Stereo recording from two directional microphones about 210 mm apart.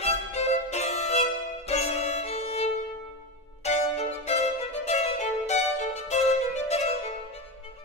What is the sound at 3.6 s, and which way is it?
Music, 30° left (ahead or behind).